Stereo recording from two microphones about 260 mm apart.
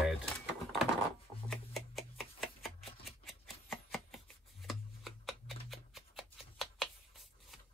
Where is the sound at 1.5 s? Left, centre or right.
Centre.